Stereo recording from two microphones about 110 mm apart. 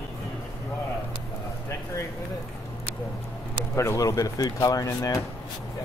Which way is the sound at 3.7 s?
30° left (ahead or behind).